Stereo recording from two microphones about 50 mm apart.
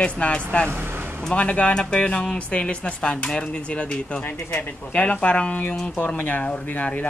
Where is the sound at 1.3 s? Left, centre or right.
Left.